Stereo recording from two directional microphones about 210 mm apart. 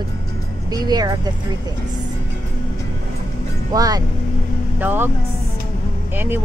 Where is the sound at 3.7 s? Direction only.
15° right (ahead or behind).